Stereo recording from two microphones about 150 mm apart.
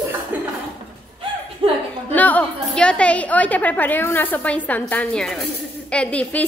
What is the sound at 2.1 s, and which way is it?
A woman's voice, 10° left (ahead or behind).